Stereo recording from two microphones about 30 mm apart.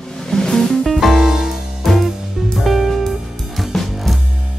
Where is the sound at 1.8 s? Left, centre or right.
Centre.